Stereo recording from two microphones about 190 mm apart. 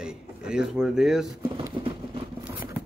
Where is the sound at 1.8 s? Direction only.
25° right (ahead or behind).